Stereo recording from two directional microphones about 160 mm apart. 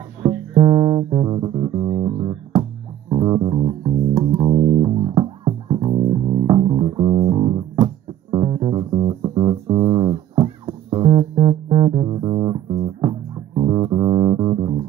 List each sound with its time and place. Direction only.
0.6 s music: 35° right (ahead or behind)
6.0 s bass guitar: 30° right (ahead or behind)
13.8 s music: 25° right (ahead or behind)